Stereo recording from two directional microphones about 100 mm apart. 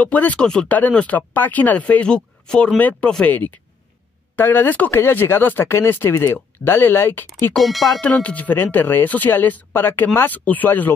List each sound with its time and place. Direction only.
0.0 s speech: 15° left (ahead or behind)
7.5 s speech: centre (ahead or behind)
8.0 s speech: 15° left (ahead or behind)